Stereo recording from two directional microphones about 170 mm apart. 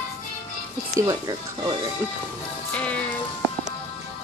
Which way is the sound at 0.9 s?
20° right (ahead or behind).